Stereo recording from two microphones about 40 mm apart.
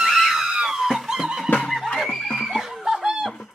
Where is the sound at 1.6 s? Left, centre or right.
Centre.